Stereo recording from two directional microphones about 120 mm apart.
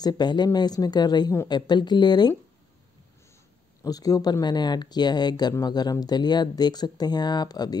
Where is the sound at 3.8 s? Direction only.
30° left (ahead or behind).